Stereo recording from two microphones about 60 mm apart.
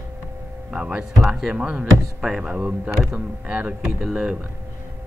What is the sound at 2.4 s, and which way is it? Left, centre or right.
Speech, right.